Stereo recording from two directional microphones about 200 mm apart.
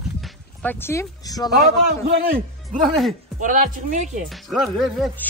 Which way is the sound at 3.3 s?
45° right (ahead or behind).